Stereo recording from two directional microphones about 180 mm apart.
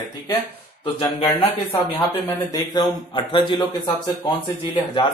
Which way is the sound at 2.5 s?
20° left (ahead or behind).